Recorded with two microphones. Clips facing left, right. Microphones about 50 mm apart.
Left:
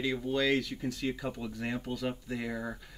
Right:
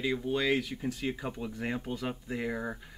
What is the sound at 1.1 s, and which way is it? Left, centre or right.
Speech, right.